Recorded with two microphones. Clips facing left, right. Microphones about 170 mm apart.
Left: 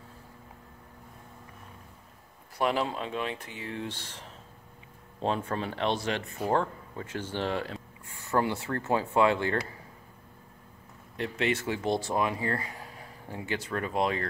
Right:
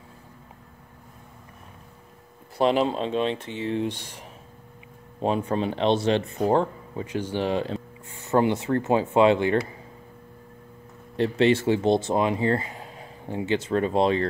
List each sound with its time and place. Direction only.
2.5 s speech: 25° right (ahead or behind)
11.1 s speech: 30° right (ahead or behind)